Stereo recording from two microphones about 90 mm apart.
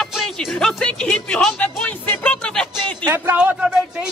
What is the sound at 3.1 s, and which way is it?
Speech, 20° right (ahead or behind).